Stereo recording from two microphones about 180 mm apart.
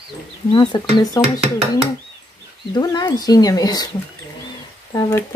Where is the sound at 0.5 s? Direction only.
25° left (ahead or behind).